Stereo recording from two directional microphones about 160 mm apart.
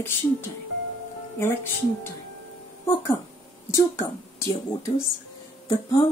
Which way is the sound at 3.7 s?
20° left (ahead or behind).